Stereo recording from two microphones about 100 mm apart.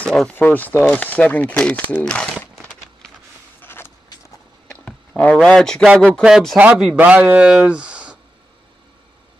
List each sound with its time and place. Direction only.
0.0 s speech: 5° left (ahead or behind)
0.3 s speech: 15° left (ahead or behind)
2.5 s a sound: 5° left (ahead or behind)
3.6 s vehicle: 25° left (ahead or behind)
4.6 s a sound: 10° left (ahead or behind)
6.2 s speech: 5° right (ahead or behind)